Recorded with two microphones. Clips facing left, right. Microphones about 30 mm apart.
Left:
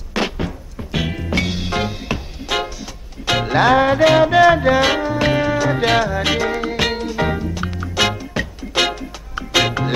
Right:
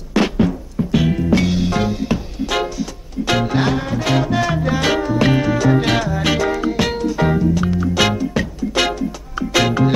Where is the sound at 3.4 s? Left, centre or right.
Left.